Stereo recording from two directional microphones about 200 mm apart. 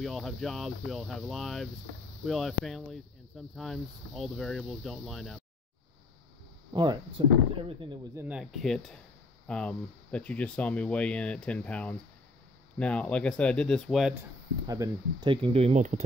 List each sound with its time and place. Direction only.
0.0 s speech: centre (ahead or behind)
6.7 s speech: 20° right (ahead or behind)
8.1 s speech: 10° right (ahead or behind)
14.7 s speech: 20° right (ahead or behind)